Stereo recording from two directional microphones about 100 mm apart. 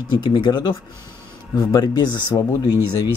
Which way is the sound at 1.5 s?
35° left (ahead or behind).